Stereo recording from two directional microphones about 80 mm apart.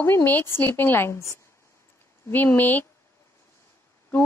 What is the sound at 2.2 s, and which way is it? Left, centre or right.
Speech, left.